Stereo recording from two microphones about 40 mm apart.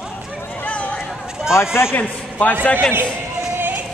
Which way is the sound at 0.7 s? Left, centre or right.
Left.